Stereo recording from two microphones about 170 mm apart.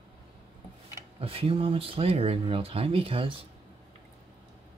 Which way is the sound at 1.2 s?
35° right (ahead or behind).